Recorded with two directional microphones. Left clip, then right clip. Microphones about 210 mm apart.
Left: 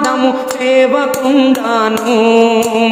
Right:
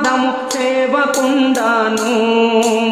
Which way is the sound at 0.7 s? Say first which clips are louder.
Left 4 dB; 25° left (ahead or behind).